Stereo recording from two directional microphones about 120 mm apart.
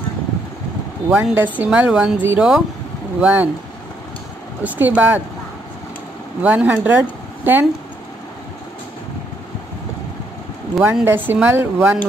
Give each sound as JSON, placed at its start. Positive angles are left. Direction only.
{"t": 1.1, "sound": "speech", "side_deg": -15}
{"t": 4.6, "sound": "speech", "side_deg": -15}
{"t": 6.4, "sound": "speech", "side_deg": -10}
{"t": 10.8, "sound": "speech", "side_deg": -15}